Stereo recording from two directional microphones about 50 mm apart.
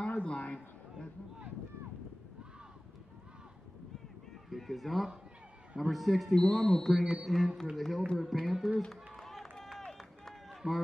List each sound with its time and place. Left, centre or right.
0.1 s a sound: left
4.5 s speech: centre
9.1 s run: centre